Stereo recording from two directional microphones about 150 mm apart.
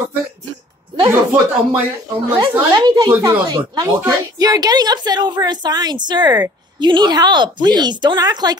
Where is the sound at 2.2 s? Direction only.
30° right (ahead or behind).